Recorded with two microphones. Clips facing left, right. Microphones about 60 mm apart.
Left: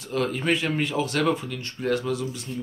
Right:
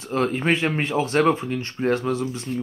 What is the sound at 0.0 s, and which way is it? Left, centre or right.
Speech, right.